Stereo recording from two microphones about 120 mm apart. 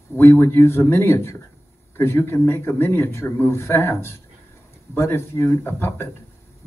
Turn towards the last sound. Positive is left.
turn(degrees=20)  # may be behind; listen again after turning